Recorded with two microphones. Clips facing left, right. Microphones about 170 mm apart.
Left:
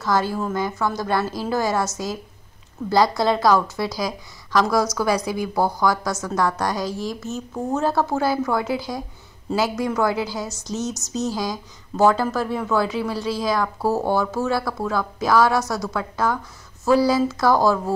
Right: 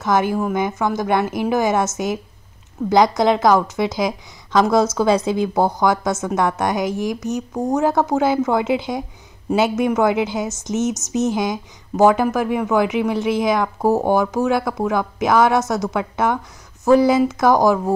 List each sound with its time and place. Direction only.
0.0 s a woman's voice: 20° right (ahead or behind)